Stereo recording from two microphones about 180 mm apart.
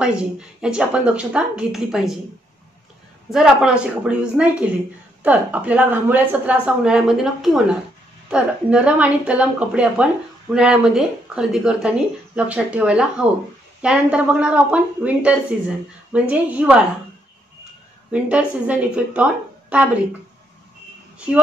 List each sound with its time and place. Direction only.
0.0 s a woman's voice: 5° right (ahead or behind)
3.3 s a woman's voice: 5° right (ahead or behind)
18.1 s a woman's voice: 5° right (ahead or behind)